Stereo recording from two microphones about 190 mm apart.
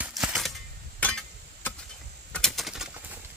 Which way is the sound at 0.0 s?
5° right (ahead or behind).